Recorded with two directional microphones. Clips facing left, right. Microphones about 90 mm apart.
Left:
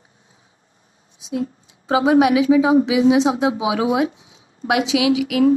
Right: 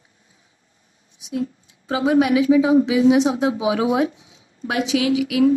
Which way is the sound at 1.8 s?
55° left (ahead or behind).